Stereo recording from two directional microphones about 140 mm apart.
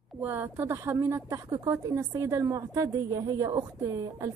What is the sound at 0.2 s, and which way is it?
A woman's voice, 15° right (ahead or behind).